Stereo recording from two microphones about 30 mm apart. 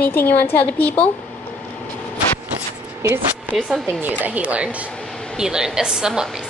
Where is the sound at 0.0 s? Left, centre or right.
Left.